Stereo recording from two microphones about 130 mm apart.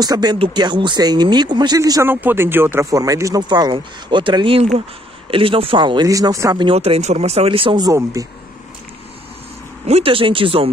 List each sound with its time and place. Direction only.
0.0 s speech: 30° right (ahead or behind)
6.6 s speech: 50° right (ahead or behind); by 8.3 s 25° right (ahead or behind)
9.8 s speech: 50° right (ahead or behind)